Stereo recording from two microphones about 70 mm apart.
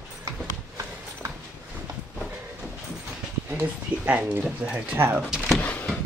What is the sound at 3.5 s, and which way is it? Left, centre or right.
A man's voice, right.